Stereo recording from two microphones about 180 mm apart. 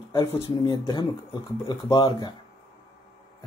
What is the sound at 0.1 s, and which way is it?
Speech, 25° left (ahead or behind).